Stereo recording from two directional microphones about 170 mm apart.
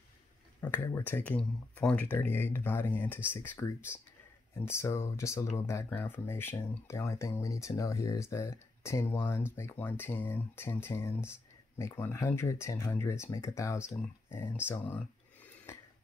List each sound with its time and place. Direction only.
0.6 s speech: 15° left (ahead or behind)
15.7 s music: 15° left (ahead or behind)